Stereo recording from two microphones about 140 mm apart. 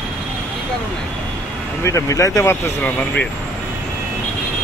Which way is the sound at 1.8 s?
20° left (ahead or behind).